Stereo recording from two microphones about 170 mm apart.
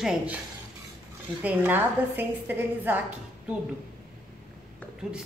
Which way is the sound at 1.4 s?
10° right (ahead or behind).